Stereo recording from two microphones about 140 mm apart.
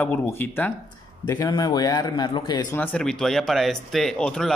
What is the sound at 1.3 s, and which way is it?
Speech, 25° left (ahead or behind).